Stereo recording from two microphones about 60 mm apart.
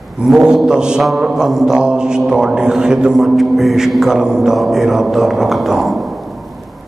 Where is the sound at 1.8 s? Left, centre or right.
Centre.